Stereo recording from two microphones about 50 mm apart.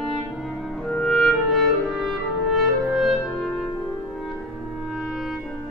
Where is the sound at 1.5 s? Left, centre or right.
Centre.